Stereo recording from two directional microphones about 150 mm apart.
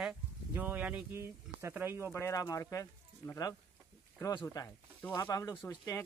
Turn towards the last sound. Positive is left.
turn(degrees=20)  # may be behind; listen again after turning